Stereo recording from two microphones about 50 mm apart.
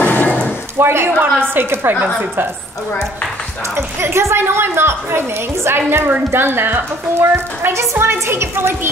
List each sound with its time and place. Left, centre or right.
0.0 s a sound: left
0.7 s a woman's voice: right
3.7 s a woman's voice: right